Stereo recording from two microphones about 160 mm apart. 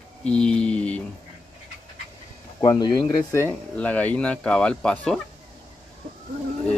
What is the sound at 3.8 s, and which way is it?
Speech, 10° left (ahead or behind).